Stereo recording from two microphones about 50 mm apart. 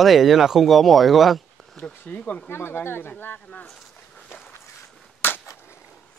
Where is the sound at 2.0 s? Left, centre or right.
Left.